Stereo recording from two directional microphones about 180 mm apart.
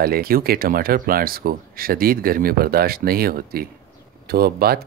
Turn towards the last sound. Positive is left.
turn(degrees=-60)  # may be behind; listen again after turning